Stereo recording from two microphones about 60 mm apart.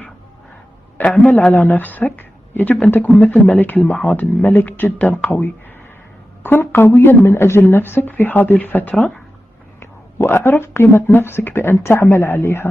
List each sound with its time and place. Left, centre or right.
1.0 s a sound: left
1.5 s speech: left
9.8 s speech: left